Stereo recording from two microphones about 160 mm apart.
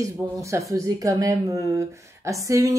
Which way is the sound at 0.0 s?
20° right (ahead or behind).